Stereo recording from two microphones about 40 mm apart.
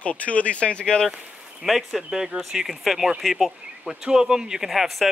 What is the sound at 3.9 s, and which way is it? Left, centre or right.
Speech, centre.